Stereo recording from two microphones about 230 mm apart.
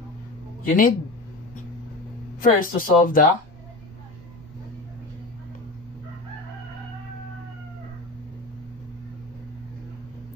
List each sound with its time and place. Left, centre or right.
0.7 s speech: left
2.4 s speech: left